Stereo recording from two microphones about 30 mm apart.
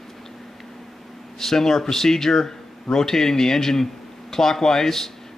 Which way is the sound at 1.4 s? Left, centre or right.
Centre.